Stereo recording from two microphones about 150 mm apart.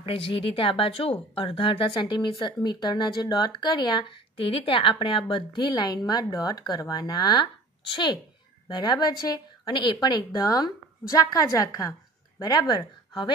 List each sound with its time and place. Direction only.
0.0 s speech: 35° left (ahead or behind)